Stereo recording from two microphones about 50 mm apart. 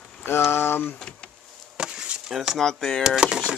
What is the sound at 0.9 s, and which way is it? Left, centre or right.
Power windows, centre.